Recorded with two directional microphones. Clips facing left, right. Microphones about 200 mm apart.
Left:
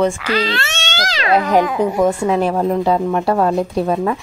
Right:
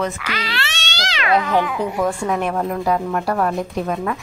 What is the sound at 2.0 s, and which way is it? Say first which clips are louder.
A woman's voice: left 5 dB; 25° left (ahead or behind).